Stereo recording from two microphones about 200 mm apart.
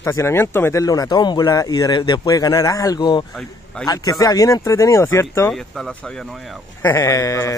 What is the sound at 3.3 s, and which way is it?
Speech, 5° left (ahead or behind).